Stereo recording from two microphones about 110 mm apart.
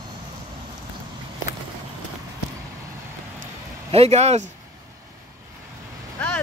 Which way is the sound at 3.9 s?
75° right (ahead or behind).